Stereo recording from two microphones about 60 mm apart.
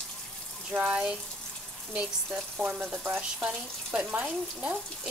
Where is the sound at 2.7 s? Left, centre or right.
Centre.